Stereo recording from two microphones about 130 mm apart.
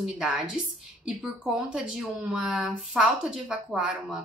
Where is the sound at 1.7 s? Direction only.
5° right (ahead or behind).